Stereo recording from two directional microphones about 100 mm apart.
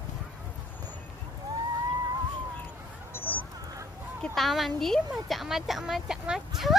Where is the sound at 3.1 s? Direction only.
20° left (ahead or behind).